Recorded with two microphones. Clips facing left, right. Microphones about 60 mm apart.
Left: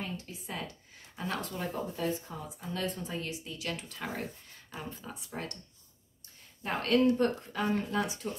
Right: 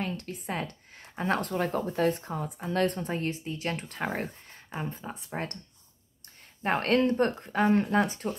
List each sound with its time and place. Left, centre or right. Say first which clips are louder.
0.0 s speech: right 6 dB; right
6.6 s speech: right 2 dB; right